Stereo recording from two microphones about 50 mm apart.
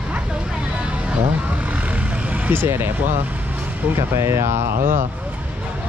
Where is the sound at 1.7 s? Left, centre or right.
Right.